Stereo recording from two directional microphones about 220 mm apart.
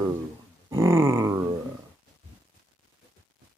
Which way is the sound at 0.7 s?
10° right (ahead or behind).